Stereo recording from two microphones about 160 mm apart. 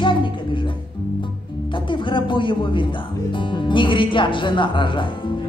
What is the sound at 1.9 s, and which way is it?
Speech, 30° left (ahead or behind).